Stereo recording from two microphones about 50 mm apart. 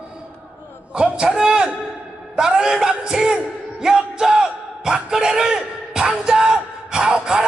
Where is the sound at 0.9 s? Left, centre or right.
Centre.